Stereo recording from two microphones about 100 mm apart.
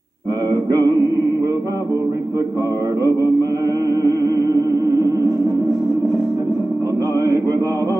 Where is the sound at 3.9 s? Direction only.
35° right (ahead or behind).